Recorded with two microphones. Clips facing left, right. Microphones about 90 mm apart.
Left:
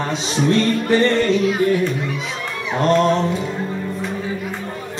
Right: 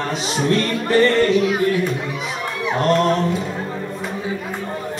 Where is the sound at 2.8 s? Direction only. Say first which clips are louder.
Left 2 dB; 20° left (ahead or behind).